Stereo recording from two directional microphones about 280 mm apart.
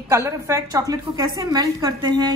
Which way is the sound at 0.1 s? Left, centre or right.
Centre.